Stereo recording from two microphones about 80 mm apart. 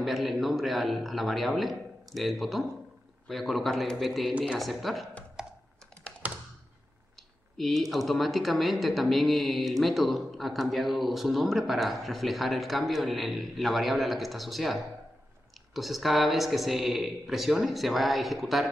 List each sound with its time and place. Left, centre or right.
0.0 s speech: centre
5.4 s computer keyboard: centre
7.5 s speech: centre